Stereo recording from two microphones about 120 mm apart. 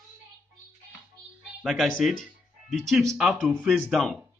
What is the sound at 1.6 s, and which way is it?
Speech, centre (ahead or behind).